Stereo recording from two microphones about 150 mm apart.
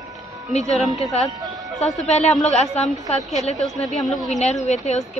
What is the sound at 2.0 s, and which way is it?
A woman's voice, 45° left (ahead or behind).